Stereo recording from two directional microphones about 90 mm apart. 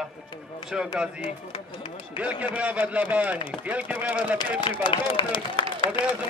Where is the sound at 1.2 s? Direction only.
70° left (ahead or behind).